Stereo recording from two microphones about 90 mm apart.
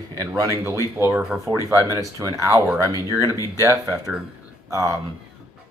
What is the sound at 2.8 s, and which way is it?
Speech, 35° left (ahead or behind).